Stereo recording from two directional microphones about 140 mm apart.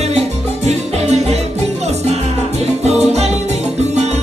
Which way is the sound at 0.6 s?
50° right (ahead or behind).